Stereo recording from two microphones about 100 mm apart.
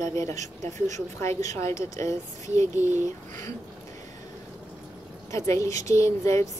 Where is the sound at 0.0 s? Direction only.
30° left (ahead or behind).